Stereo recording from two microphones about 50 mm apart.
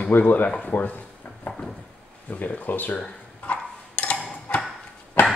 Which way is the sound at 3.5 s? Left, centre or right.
Left.